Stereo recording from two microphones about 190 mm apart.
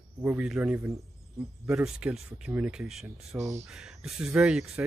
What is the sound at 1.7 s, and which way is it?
Speech, 5° right (ahead or behind).